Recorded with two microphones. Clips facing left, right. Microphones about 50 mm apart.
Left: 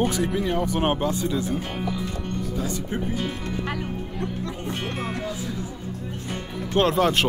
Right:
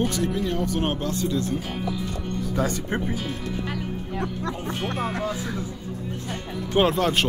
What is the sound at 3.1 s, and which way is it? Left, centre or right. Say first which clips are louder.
Speech: left 1 dB; centre.